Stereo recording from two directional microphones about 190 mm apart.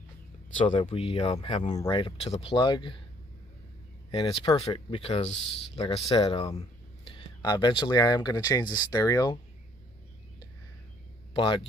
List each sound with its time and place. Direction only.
0.7 s speech: 30° left (ahead or behind)
4.1 s speech: 30° left (ahead or behind)
11.3 s speech: 25° left (ahead or behind)